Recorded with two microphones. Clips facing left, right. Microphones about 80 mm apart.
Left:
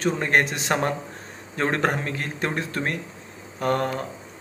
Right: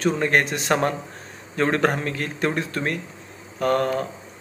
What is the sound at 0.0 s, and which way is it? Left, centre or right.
Speech, left.